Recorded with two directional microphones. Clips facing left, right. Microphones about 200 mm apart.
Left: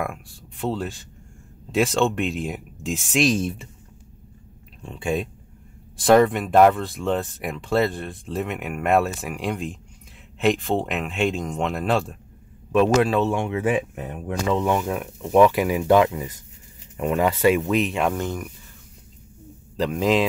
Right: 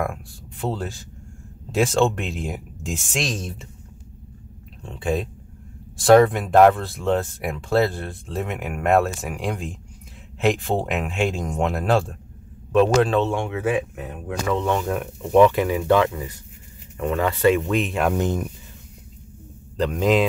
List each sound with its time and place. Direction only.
0.6 s speech: centre (ahead or behind)
4.8 s speech: centre (ahead or behind)
14.5 s speech: 10° left (ahead or behind)
18.1 s speech: 20° right (ahead or behind)
19.8 s speech: centre (ahead or behind)